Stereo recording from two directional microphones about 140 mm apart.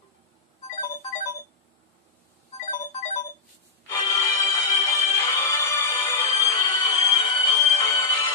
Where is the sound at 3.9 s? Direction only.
25° left (ahead or behind).